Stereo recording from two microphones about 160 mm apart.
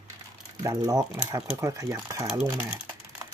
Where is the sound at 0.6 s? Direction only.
25° right (ahead or behind).